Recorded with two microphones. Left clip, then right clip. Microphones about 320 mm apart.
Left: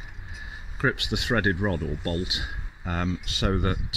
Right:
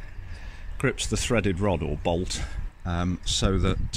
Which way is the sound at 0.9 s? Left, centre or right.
Right.